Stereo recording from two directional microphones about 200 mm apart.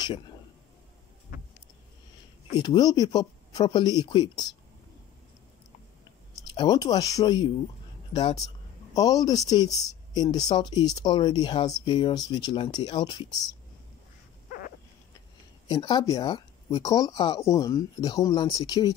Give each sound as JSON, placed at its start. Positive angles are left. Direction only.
{"t": 2.6, "sound": "speech", "side_deg": 20}
{"t": 6.4, "sound": "speech", "side_deg": 20}
{"t": 15.7, "sound": "speech", "side_deg": 20}